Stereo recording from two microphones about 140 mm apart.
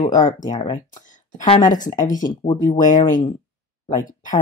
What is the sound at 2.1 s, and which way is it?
Speech, 30° left (ahead or behind).